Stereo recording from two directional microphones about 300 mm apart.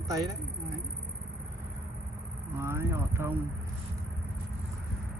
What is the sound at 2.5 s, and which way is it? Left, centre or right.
Speech, centre.